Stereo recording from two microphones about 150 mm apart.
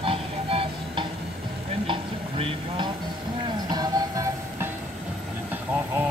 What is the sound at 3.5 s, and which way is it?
Music, 25° right (ahead or behind).